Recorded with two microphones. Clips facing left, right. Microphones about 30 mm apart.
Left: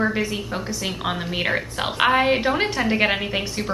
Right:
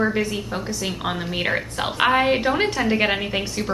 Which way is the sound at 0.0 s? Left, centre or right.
Centre.